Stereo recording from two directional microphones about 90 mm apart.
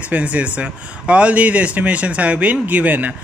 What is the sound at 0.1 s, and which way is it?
Speech, 15° right (ahead or behind).